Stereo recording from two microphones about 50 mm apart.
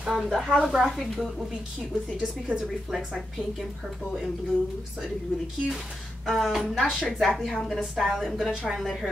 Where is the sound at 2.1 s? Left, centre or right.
Right.